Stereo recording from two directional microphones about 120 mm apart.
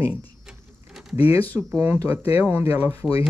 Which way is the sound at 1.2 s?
55° left (ahead or behind).